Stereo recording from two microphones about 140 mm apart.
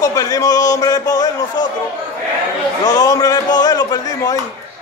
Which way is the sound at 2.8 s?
25° left (ahead or behind).